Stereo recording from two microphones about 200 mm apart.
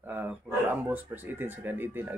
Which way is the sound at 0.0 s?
10° right (ahead or behind).